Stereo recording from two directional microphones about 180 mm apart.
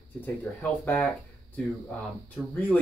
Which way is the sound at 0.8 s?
10° left (ahead or behind).